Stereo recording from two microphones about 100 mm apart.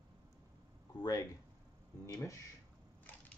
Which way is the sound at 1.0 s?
40° left (ahead or behind).